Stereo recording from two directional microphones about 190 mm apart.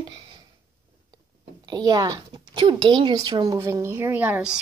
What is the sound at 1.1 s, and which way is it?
Speech, 20° right (ahead or behind).